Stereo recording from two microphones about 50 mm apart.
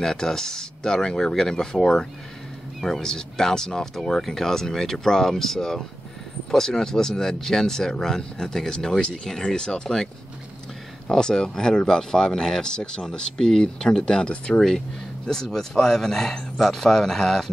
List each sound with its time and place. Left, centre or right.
0.0 s speech: centre
11.1 s speech: centre
15.2 s speech: centre